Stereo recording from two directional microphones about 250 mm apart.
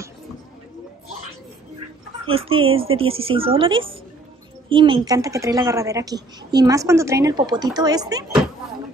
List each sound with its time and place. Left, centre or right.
2.2 s a woman's voice: right